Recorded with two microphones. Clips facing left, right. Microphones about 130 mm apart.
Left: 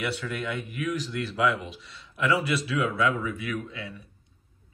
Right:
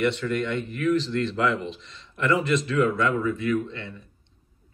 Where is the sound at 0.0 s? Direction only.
5° left (ahead or behind).